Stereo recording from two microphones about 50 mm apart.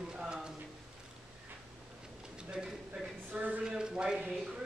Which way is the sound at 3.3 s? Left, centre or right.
Right.